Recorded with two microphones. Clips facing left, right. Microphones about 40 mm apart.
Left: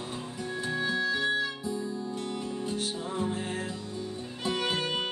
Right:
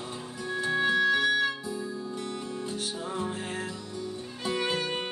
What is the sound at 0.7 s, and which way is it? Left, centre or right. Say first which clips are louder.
Music: right 5 dB; right.